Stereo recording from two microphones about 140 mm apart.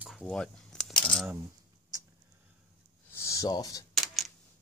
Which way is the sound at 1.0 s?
5° left (ahead or behind).